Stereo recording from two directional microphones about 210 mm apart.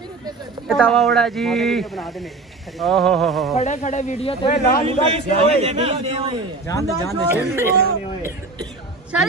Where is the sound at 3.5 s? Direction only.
35° left (ahead or behind).